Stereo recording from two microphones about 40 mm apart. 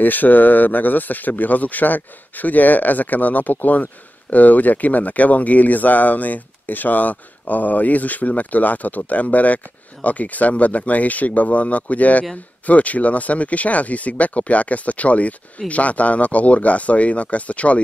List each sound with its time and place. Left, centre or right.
0.0 s speech: left